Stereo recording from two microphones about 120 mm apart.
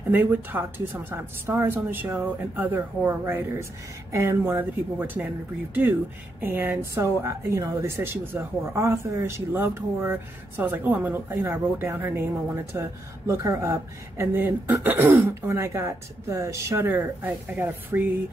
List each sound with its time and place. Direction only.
0.1 s a woman's voice: 15° right (ahead or behind)
6.4 s a woman's voice: 15° right (ahead or behind)